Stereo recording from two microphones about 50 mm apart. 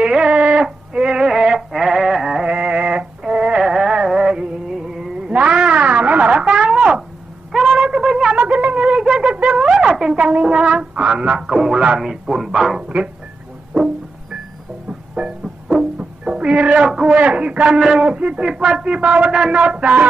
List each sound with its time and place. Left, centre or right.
0.0 s a sound: centre
2.4 s music: right
5.3 s a sound: right
8.4 s wind instrument: right
9.0 s a sound: centre
10.1 s music: right
12.0 s speech: centre
12.8 s dog: right
14.9 s music: centre
17.9 s speech: right